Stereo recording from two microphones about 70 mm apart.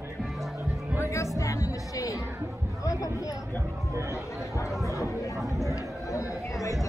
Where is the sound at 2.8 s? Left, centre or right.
Left.